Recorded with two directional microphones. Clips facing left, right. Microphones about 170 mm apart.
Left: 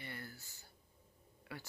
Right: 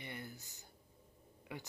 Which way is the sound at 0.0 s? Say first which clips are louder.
Right 1 dB; 20° right (ahead or behind).